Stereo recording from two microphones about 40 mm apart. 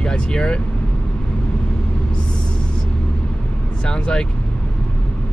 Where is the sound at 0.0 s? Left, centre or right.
Left.